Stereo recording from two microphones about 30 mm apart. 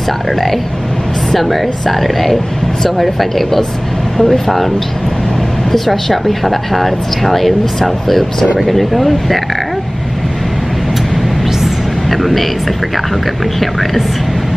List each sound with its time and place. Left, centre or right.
1.3 s speech: centre
4.2 s speech: centre
5.7 s speech: centre
11.6 s a sound: centre
13.6 s speech: centre